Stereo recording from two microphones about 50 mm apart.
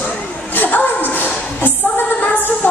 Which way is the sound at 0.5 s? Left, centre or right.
Left.